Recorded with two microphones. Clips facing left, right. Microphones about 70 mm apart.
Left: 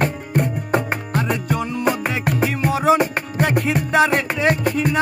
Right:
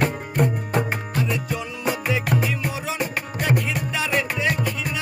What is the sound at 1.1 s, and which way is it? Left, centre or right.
Music, left.